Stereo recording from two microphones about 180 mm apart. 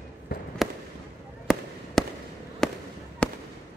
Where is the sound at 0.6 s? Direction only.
Centre (ahead or behind).